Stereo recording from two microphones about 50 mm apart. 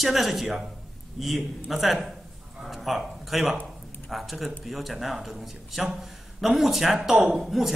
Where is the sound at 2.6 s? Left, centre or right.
Centre.